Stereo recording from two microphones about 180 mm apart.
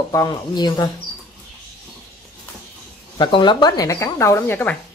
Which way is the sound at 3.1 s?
25° left (ahead or behind).